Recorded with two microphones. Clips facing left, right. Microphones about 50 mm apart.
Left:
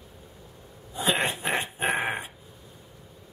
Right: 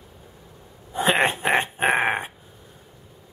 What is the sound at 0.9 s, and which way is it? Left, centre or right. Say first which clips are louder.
Dog: right 6 dB; right.